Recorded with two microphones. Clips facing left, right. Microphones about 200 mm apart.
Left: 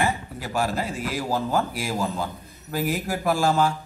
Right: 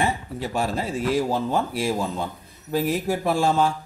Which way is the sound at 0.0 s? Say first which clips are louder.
Right 1 dB; 25° right (ahead or behind).